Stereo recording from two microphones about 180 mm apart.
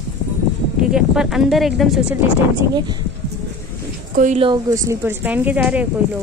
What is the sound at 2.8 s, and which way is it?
Speech, 25° right (ahead or behind).